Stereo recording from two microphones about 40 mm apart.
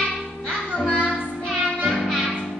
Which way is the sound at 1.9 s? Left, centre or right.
Centre.